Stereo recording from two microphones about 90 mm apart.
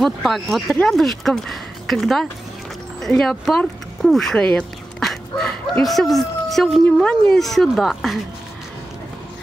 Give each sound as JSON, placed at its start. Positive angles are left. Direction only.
{"t": 0.0, "sound": "speech", "side_deg": 0}